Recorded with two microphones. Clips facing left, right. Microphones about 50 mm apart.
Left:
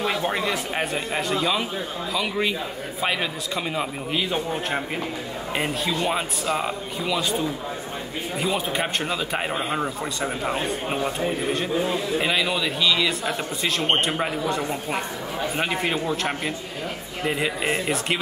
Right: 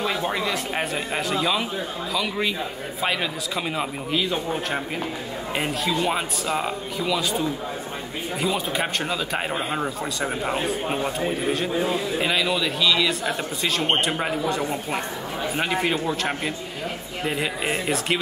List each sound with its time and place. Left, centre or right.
0.0 s a man's voice: centre